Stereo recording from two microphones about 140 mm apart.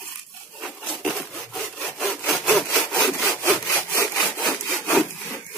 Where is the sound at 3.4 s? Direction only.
20° left (ahead or behind).